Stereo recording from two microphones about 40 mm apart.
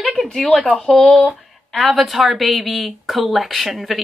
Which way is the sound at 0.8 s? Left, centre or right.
Centre.